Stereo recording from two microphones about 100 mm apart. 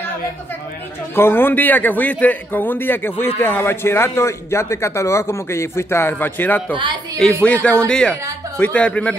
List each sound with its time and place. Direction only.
1.1 s a man's voice: 25° left (ahead or behind)